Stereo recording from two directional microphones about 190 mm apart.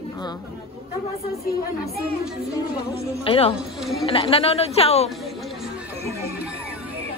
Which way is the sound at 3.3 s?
30° left (ahead or behind).